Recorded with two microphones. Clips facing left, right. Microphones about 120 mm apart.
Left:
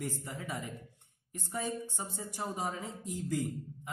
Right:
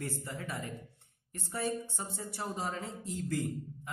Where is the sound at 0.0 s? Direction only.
20° left (ahead or behind).